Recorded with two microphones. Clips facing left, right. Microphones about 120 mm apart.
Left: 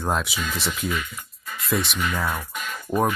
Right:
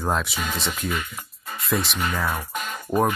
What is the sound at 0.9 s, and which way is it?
Music, 45° right (ahead or behind).